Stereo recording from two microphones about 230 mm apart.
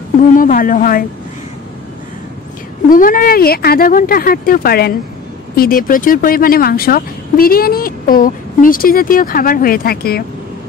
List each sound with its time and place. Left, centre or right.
0.2 s speech: left
2.9 s speech: left